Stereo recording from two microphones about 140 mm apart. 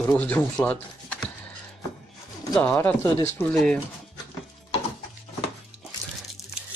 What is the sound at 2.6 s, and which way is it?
Speech, 10° left (ahead or behind).